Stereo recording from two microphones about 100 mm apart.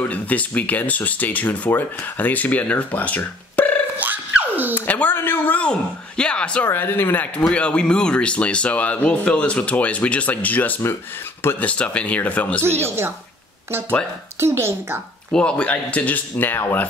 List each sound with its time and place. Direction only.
0.0 s speech: 15° left (ahead or behind)
4.0 s a sound: 15° right (ahead or behind)
4.7 s a man's voice: 15° left (ahead or behind)
6.7 s speech: 20° left (ahead or behind)
12.8 s a woman's voice: 25° right (ahead or behind)
15.3 s speech: 10° left (ahead or behind)